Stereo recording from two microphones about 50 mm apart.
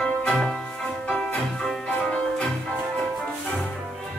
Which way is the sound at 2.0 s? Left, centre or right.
Centre.